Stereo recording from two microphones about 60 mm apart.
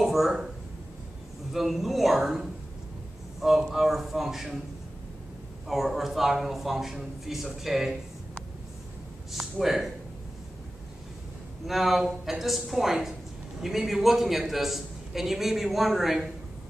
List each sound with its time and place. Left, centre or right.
0.0 s speech: centre
1.5 s a man's voice: centre
3.3 s a man's voice: centre
5.7 s a man's voice: centre
9.3 s a man's voice: centre
11.6 s a man's voice: centre